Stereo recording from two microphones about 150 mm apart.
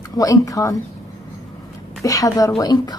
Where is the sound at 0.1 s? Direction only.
20° left (ahead or behind).